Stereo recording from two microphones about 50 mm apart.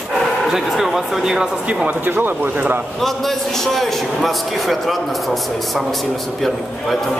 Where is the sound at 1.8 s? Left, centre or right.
Right.